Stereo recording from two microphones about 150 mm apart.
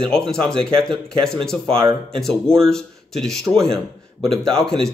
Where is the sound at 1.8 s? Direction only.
35° right (ahead or behind).